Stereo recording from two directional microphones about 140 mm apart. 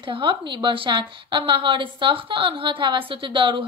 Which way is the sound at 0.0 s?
35° right (ahead or behind).